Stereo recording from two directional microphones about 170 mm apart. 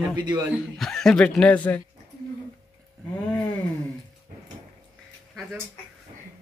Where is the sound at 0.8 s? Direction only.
5° left (ahead or behind).